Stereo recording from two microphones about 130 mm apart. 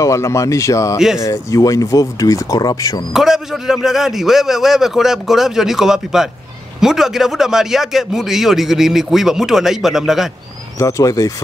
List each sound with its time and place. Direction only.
0.0 s speech: 25° left (ahead or behind)
0.9 s speech: 5° right (ahead or behind)
1.2 s speech: 25° left (ahead or behind)
3.1 s speech: 5° right (ahead or behind)
10.8 s speech: 25° left (ahead or behind)